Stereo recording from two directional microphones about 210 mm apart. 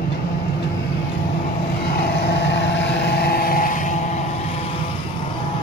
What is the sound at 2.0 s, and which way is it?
Vehicle, 55° left (ahead or behind).